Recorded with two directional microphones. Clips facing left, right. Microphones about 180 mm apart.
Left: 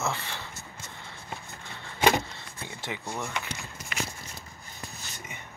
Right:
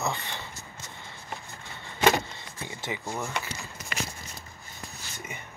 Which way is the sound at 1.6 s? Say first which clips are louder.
Right 1 dB; centre (ahead or behind).